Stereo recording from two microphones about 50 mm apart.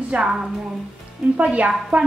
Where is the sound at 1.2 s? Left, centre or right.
Right.